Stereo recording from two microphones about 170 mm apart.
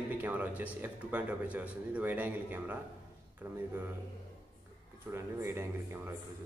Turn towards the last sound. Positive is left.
turn(degrees=-15)  # may be behind; listen again after turning